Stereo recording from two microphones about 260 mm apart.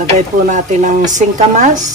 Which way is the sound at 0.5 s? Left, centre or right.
Right.